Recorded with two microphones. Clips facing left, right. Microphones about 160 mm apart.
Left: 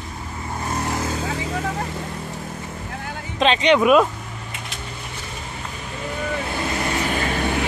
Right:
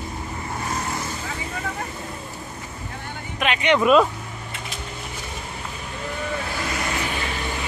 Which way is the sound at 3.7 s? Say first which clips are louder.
Even; 5° left (ahead or behind).